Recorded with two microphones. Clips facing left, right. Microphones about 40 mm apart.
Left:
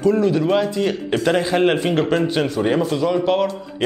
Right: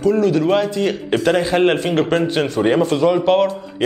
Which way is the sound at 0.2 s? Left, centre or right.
Left.